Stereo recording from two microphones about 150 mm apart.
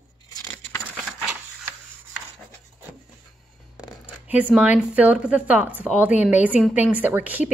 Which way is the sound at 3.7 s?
10° right (ahead or behind).